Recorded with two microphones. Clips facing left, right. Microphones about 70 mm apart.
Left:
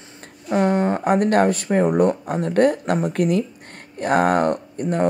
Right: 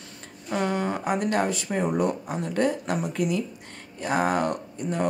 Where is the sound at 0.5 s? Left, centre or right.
Left.